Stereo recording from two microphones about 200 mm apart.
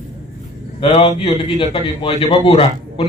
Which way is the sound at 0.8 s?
25° left (ahead or behind).